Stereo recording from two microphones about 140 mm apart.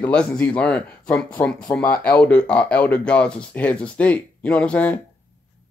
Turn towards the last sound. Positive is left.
turn(degrees=10)  # may be behind; listen again after turning